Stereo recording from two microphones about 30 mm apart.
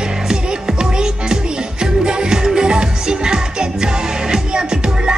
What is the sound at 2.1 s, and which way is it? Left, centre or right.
Music, right.